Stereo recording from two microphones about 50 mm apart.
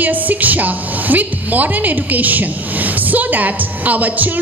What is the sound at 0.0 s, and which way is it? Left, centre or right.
A woman's voice, right.